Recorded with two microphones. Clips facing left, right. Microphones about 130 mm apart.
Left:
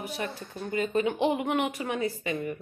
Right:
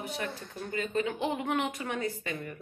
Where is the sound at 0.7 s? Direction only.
20° left (ahead or behind).